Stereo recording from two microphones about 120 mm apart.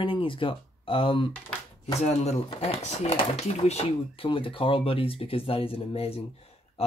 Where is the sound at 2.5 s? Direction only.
55° left (ahead or behind).